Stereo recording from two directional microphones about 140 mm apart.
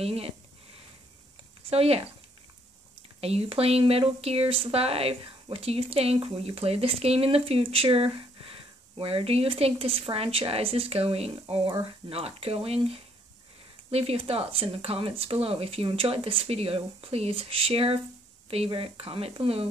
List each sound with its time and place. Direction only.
0.0 s speech: 45° right (ahead or behind)
1.7 s speech: 45° right (ahead or behind)
3.2 s speech: 45° right (ahead or behind)